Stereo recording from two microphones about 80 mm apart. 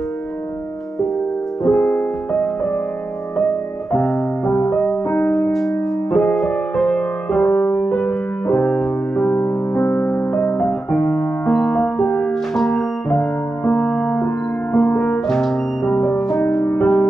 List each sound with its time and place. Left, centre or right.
1.6 s music: centre
5.3 s music: centre
7.5 s music: left; by 13.2 s centre
13.2 s french horn: centre
15.2 s music: centre